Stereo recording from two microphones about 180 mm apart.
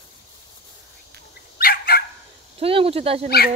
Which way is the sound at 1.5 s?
55° left (ahead or behind).